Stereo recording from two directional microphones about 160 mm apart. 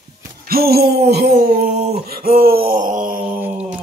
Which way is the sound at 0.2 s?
70° right (ahead or behind).